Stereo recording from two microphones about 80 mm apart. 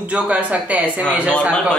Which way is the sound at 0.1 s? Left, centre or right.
Centre.